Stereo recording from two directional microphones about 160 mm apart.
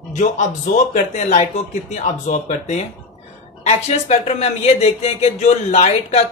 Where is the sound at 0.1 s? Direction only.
50° left (ahead or behind).